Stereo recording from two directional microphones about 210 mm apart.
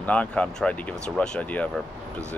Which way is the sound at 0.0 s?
5° left (ahead or behind).